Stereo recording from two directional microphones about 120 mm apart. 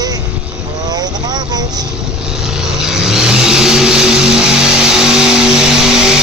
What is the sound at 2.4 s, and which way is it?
Vehicle, 5° right (ahead or behind).